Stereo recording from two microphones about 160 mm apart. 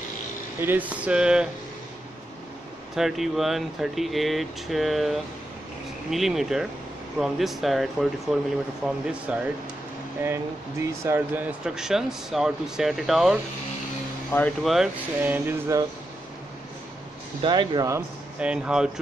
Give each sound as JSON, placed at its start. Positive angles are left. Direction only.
{"t": 0.7, "sound": "speech", "side_deg": -10}
{"t": 3.0, "sound": "speech", "side_deg": 0}
{"t": 14.6, "sound": "speech", "side_deg": 0}
{"t": 15.2, "sound": "speech", "side_deg": -10}
{"t": 17.4, "sound": "speech", "side_deg": -30}
{"t": 18.4, "sound": "speech", "side_deg": -5}